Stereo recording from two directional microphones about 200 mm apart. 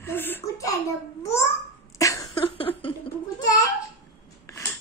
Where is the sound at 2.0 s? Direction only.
15° left (ahead or behind).